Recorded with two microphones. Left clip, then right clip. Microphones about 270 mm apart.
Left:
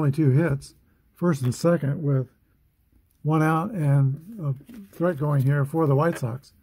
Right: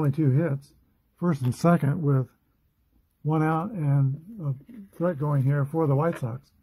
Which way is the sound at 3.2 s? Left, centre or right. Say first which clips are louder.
Left 3 dB; centre.